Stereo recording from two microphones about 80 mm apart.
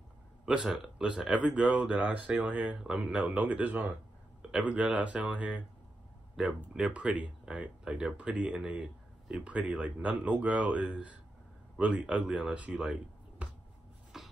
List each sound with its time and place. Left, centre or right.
0.5 s speech: centre
14.1 s rub: centre